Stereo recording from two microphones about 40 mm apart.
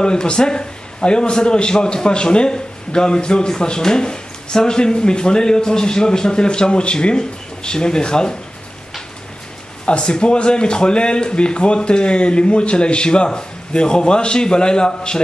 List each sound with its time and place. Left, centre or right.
0.0 s a man's voice: left
9.8 s a man's voice: left